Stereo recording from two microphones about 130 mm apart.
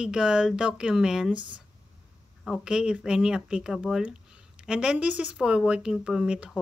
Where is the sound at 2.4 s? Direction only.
5° right (ahead or behind).